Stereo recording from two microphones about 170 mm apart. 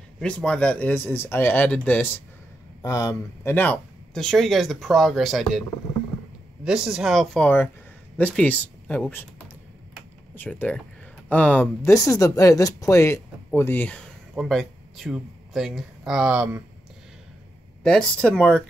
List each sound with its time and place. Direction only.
0.2 s speech: 5° left (ahead or behind)
6.6 s speech: 5° right (ahead or behind)
10.3 s speech: 10° left (ahead or behind); by 16.6 s 5° right (ahead or behind)
17.8 s speech: 5° left (ahead or behind)